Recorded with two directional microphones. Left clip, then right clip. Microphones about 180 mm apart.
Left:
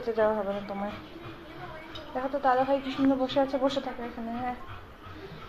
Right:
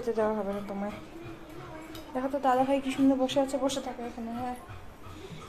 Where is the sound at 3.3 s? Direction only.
20° right (ahead or behind).